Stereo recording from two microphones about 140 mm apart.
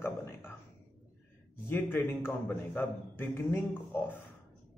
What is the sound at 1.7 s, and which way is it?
Speech, 15° left (ahead or behind).